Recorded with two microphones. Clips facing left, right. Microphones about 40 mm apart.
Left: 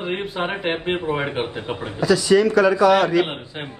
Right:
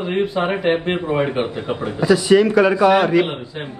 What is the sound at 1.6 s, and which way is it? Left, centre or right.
Speech, right.